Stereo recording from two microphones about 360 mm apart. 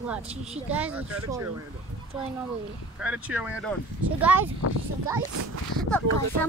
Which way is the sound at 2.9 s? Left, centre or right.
Centre.